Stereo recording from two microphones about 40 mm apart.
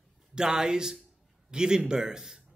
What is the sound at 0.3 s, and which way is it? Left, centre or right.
A man's voice, centre.